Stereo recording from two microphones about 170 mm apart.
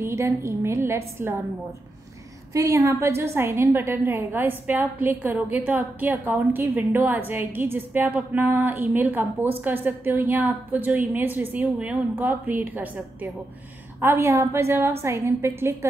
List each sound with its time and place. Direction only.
0.0 s a woman's voice: 15° right (ahead or behind)
2.5 s a woman's voice: 20° right (ahead or behind)